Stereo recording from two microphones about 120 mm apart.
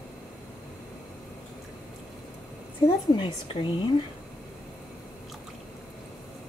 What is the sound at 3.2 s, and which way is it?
Speech, 45° left (ahead or behind).